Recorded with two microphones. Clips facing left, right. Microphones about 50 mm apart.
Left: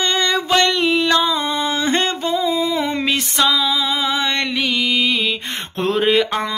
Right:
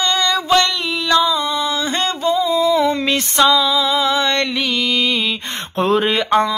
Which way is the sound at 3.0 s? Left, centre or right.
Centre.